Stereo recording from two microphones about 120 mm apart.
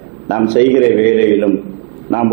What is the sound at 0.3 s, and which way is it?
A man's voice, 15° right (ahead or behind).